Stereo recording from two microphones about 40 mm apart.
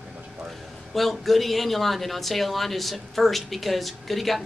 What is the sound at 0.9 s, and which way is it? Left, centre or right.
Speech, centre.